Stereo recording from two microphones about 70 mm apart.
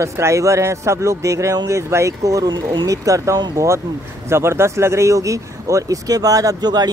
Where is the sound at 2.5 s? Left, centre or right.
Right.